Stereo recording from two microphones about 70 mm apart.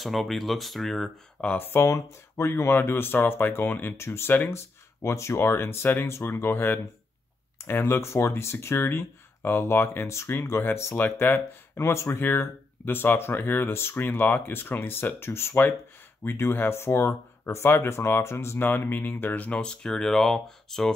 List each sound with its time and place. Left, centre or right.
0.0 s speech: centre
1.4 s speech: left
1.7 s speech: left
11.0 s speech: left
11.2 s speech: left
12.2 s speech: left; by 20.9 s centre